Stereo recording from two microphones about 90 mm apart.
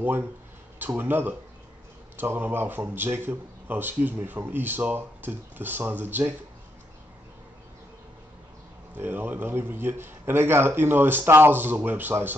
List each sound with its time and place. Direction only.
0.7 s speech: 20° right (ahead or behind)
8.9 s speech: 20° right (ahead or behind)